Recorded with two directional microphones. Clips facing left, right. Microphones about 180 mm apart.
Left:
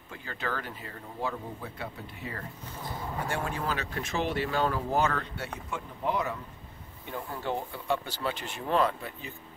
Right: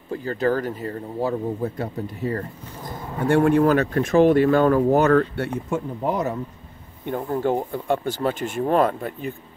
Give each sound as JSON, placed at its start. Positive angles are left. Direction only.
{"t": 0.1, "sound": "speech", "side_deg": -40}
{"t": 3.3, "sound": "speech", "side_deg": -60}
{"t": 5.7, "sound": "speech", "side_deg": -45}